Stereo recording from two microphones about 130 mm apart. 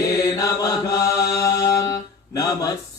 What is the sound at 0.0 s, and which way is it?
Mantra, 25° left (ahead or behind).